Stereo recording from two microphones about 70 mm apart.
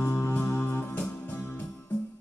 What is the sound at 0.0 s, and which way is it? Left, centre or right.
Music, left.